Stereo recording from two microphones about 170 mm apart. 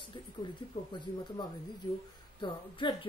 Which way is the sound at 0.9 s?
25° left (ahead or behind).